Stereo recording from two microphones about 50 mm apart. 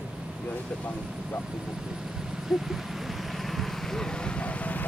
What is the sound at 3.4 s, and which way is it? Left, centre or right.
Vehicle, centre.